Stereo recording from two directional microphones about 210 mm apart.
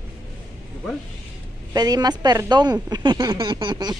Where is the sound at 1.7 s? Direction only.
20° right (ahead or behind).